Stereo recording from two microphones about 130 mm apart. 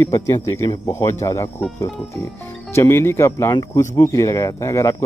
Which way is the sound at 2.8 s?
20° left (ahead or behind).